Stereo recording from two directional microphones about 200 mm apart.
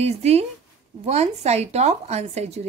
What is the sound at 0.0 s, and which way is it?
A woman's voice, 30° right (ahead or behind).